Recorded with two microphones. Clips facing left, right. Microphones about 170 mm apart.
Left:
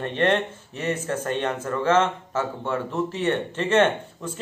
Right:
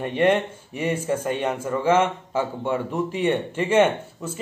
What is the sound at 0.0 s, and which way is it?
Speech, 10° right (ahead or behind).